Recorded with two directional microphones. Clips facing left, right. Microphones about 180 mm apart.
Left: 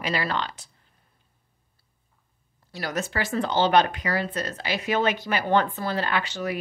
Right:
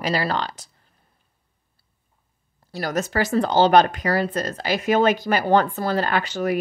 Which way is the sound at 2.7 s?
40° right (ahead or behind).